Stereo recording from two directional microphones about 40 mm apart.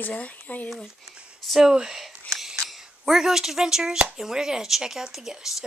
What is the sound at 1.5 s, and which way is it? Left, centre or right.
Speech, centre.